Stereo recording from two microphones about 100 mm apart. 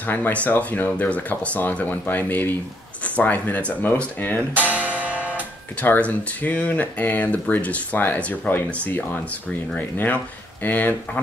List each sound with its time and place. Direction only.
0.0 s speech: 20° left (ahead or behind)
4.6 s music: 15° right (ahead or behind)
5.8 s speech: 15° left (ahead or behind)